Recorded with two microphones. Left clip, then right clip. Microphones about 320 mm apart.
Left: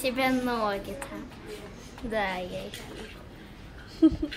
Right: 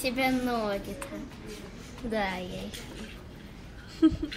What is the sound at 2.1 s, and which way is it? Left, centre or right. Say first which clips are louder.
Speech: left 2 dB; centre.